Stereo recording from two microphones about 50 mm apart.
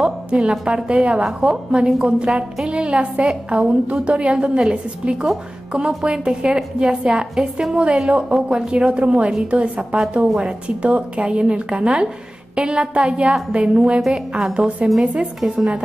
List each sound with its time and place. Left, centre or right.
0.0 s a woman's voice: centre
15.1 s a woman's voice: centre